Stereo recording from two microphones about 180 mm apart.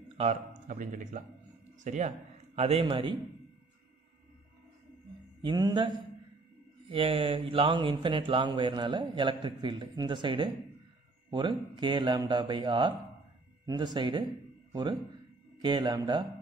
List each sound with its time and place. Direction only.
0.2 s a man's voice: 40° right (ahead or behind)
5.4 s speech: 25° right (ahead or behind)